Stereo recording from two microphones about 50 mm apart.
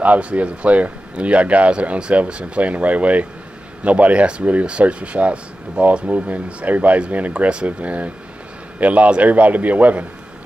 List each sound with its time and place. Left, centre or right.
0.0 s a man's voice: right